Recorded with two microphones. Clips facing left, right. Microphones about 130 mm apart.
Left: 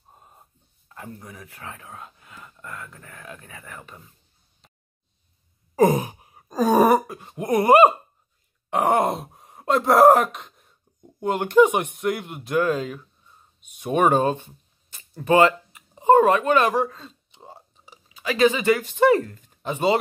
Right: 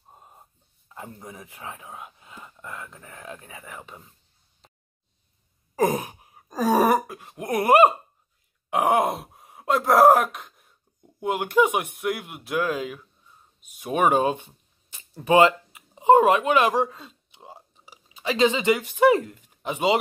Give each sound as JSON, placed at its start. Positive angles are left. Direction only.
{"t": 0.1, "sound": "a sound", "side_deg": -15}
{"t": 0.9, "sound": "speech", "side_deg": -20}
{"t": 5.8, "sound": "gasp", "side_deg": 0}
{"t": 8.6, "sound": "groan", "side_deg": -10}
{"t": 11.1, "sound": "speech", "side_deg": -5}
{"t": 18.0, "sound": "speech", "side_deg": -25}